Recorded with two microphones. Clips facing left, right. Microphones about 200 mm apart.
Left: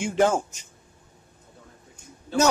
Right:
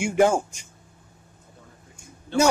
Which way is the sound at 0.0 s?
10° right (ahead or behind).